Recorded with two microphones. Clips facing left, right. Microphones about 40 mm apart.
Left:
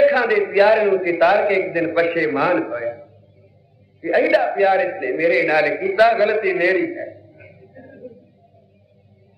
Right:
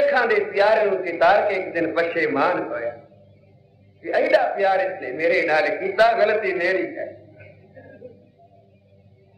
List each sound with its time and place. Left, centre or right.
0.1 s a sound: centre
0.5 s a man's voice: centre
1.2 s a man's voice: centre
4.0 s a man's voice: left
4.3 s a man's voice: centre